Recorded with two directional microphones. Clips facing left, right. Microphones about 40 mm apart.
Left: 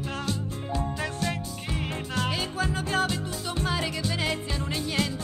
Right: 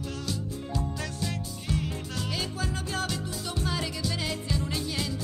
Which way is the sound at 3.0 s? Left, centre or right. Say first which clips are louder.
Left 4 dB; left.